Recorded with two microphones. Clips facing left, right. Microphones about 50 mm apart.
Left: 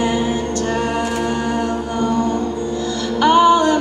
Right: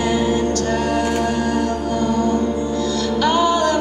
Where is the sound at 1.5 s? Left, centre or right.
Left.